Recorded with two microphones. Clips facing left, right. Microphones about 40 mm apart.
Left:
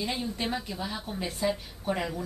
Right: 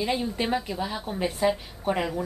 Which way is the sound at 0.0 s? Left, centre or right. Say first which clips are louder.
Right 5 dB; centre.